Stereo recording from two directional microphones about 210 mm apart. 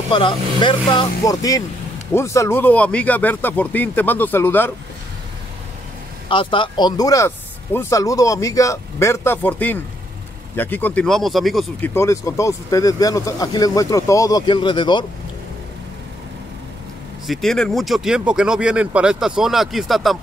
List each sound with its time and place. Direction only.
0.1 s speech: 25° left (ahead or behind)
6.2 s speech: 25° left (ahead or behind); by 11.9 s centre (ahead or behind)
11.9 s speech: 15° left (ahead or behind)
17.3 s speech: centre (ahead or behind)